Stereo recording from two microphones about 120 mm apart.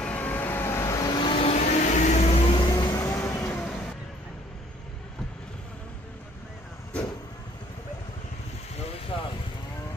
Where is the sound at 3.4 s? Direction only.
10° left (ahead or behind).